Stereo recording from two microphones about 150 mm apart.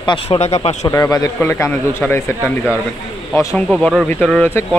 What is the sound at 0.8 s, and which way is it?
Speech, 20° left (ahead or behind).